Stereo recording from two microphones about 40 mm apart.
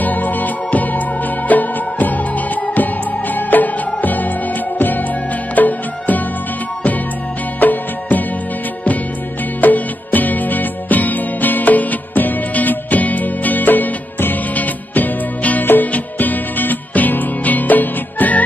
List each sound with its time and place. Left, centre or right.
0.0 s music: left
3.3 s music: left
5.6 s music: left
7.6 s music: left
9.6 s music: left
15.6 s music: left